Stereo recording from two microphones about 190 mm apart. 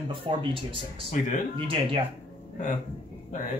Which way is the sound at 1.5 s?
25° right (ahead or behind).